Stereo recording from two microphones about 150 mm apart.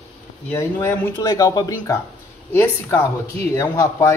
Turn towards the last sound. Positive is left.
turn(degrees=20)  # may be behind; listen again after turning